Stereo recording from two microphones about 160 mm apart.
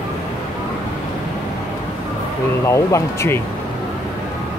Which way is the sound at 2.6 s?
20° left (ahead or behind).